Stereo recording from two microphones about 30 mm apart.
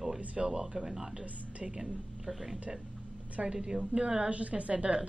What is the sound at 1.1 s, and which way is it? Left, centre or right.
Speech, right.